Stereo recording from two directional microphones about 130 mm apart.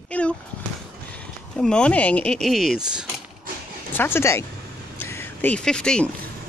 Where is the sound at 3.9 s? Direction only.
15° left (ahead or behind).